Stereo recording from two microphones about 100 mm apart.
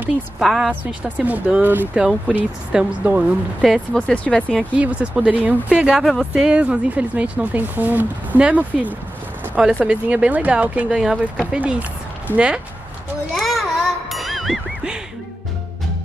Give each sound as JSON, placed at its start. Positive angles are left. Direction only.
{"t": 0.4, "sound": "a woman's voice", "side_deg": -5}
{"t": 1.0, "sound": "speech", "side_deg": -15}
{"t": 3.9, "sound": "speech", "side_deg": 10}
{"t": 4.7, "sound": "speech", "side_deg": -15}
{"t": 12.3, "sound": "speech", "side_deg": 20}
{"t": 13.3, "sound": "music", "side_deg": 0}